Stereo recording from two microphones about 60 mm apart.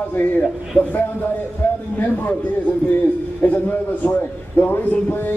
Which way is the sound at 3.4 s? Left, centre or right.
Left.